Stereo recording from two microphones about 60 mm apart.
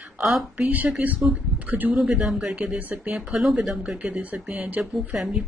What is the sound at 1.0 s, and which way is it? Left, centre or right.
Speech, right.